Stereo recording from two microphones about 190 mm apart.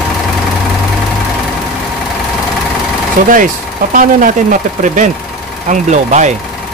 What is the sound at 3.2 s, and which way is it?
Speech, 50° right (ahead or behind).